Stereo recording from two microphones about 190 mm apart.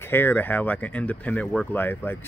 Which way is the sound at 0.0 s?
10° left (ahead or behind).